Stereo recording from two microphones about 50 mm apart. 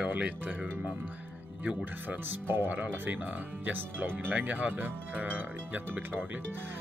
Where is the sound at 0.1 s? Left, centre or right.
Right.